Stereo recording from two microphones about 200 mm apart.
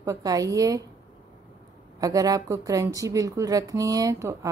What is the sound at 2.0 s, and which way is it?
A woman's voice, 15° right (ahead or behind).